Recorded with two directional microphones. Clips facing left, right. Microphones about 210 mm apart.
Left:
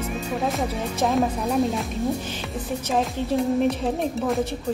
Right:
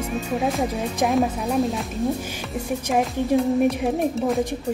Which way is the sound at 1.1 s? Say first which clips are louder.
Even; centre (ahead or behind).